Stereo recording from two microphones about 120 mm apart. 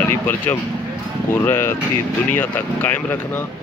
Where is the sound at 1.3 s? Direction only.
20° left (ahead or behind).